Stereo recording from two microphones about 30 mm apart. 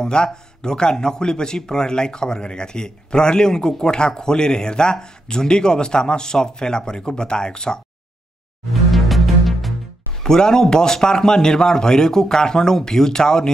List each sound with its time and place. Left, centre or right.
0.0 s a man's voice: left
8.9 s music: centre
10.2 s a man's voice: left